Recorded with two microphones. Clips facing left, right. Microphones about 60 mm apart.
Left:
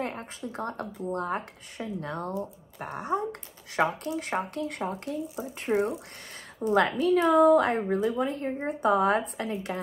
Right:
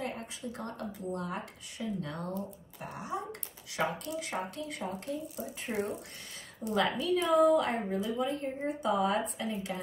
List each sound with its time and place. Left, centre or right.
0.0 s speech: left
2.8 s a woman's voice: left